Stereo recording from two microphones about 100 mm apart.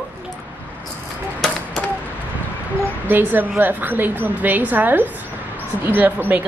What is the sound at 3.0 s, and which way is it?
A woman's voice, 20° right (ahead or behind).